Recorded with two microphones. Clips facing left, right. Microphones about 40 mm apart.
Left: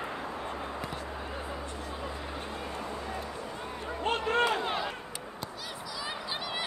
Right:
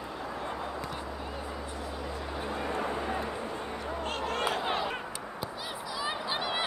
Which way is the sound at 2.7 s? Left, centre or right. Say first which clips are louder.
Right 6 dB; right.